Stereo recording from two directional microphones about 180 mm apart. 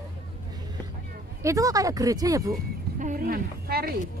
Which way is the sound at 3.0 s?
45° right (ahead or behind).